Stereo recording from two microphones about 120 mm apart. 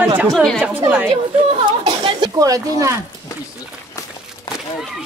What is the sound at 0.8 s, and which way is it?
Speech, 15° right (ahead or behind).